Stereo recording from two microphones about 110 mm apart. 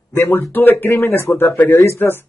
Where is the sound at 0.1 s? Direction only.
20° left (ahead or behind).